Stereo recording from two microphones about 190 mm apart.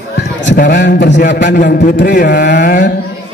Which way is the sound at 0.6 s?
45° left (ahead or behind).